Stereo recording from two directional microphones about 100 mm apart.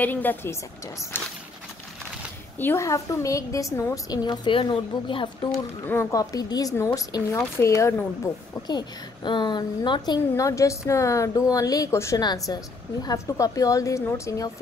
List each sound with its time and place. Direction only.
0.0 s a woman's voice: 20° left (ahead or behind)
2.6 s a woman's voice: 30° left (ahead or behind)
4.5 s a woman's voice: 55° left (ahead or behind)
5.9 s a woman's voice: 25° left (ahead or behind)
8.6 s a woman's voice: 45° left (ahead or behind)
10.3 s a woman's voice: 35° left (ahead or behind)
12.2 s a woman's voice: 40° left (ahead or behind)